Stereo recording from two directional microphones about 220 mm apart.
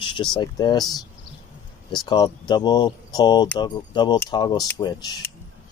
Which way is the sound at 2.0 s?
20° left (ahead or behind).